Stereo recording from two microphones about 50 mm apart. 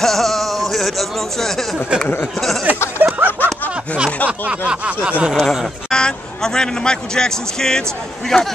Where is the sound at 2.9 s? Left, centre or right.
Right.